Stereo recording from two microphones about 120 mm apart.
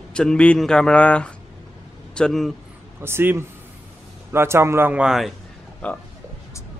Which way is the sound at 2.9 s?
20° right (ahead or behind).